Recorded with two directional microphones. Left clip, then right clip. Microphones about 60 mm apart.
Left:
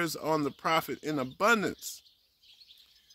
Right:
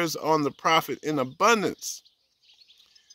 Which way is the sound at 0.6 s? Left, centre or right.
Centre.